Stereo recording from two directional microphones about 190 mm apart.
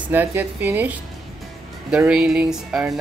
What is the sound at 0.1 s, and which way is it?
Speech, 10° right (ahead or behind).